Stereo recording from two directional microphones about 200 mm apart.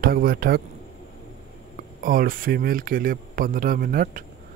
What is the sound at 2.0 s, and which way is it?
A man's voice, 45° right (ahead or behind).